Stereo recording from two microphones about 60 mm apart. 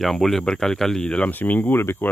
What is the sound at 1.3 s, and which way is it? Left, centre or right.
Speech, left.